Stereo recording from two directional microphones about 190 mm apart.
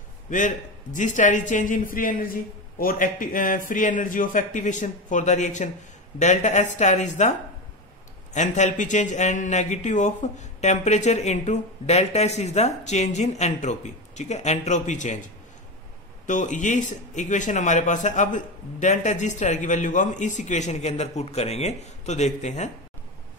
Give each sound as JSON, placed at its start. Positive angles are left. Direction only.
{"t": 0.3, "sound": "a man's voice", "side_deg": 40}
{"t": 16.3, "sound": "a man's voice", "side_deg": 40}